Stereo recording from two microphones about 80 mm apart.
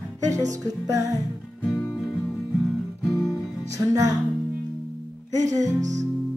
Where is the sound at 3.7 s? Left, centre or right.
Right.